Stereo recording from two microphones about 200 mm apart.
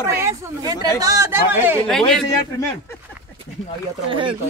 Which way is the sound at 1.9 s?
Centre (ahead or behind).